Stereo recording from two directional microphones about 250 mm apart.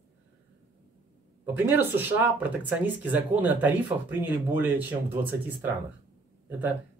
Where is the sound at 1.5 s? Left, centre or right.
Centre.